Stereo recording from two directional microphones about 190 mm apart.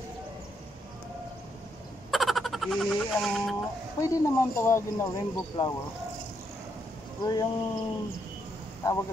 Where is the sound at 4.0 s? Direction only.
15° left (ahead or behind).